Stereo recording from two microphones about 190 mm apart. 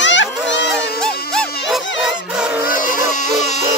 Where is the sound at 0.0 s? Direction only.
70° left (ahead or behind).